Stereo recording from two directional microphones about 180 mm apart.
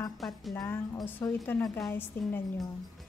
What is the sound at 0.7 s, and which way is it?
A woman's voice, 15° left (ahead or behind).